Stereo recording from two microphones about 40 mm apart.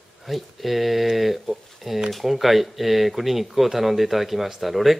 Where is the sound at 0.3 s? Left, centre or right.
Centre.